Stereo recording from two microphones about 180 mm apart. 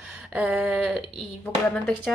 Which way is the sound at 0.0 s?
10° right (ahead or behind).